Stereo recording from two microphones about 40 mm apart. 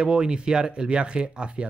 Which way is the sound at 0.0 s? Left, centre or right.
Right.